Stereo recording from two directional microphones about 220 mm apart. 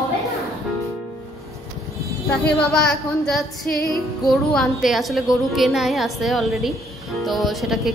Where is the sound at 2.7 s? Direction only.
Centre (ahead or behind).